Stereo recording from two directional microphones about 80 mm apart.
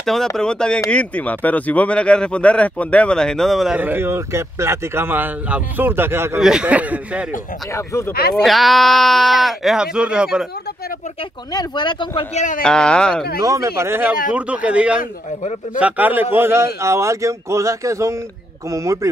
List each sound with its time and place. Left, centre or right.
0.0 s speech: centre
3.7 s speech: right
6.4 s speech: centre
7.7 s speech: left
8.4 s speech: centre
11.5 s speech: left
12.6 s speech: centre
13.4 s a man's voice: right
14.0 s a man's voice: centre; by 18.9 s right